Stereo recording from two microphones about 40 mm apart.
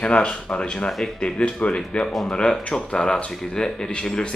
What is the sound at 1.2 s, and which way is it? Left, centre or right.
Speech, left.